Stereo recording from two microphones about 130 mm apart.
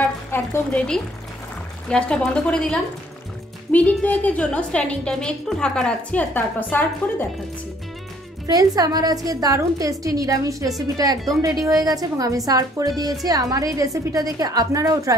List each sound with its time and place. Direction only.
0.0 s a woman's voice: 15° left (ahead or behind)
8.5 s a woman's voice: 30° right (ahead or behind)